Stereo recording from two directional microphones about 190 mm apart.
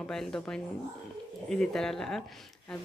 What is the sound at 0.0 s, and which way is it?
Speech, 5° left (ahead or behind).